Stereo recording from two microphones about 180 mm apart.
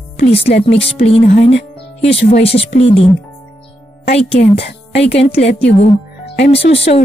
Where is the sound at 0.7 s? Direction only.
35° left (ahead or behind).